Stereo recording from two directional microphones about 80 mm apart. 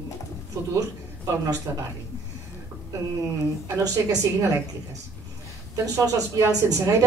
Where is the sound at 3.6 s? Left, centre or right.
Right.